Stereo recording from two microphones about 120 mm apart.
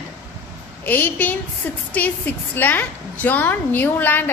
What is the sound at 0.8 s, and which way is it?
A woman's voice, 15° left (ahead or behind).